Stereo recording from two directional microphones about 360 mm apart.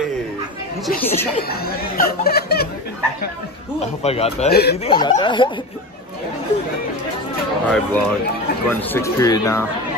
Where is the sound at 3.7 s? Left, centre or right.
Centre.